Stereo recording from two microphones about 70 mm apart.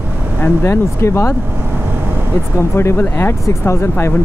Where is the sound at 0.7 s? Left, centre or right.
Left.